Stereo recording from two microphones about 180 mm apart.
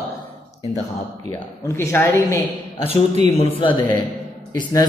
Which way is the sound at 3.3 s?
30° left (ahead or behind).